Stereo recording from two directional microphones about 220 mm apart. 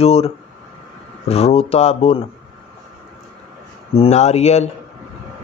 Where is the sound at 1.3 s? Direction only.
25° left (ahead or behind).